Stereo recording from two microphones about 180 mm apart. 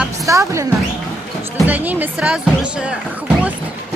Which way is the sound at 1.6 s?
10° right (ahead or behind).